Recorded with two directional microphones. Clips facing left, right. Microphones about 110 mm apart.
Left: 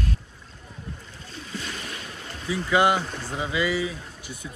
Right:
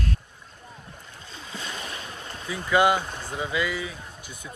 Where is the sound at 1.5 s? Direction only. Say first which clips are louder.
Even; 15° right (ahead or behind).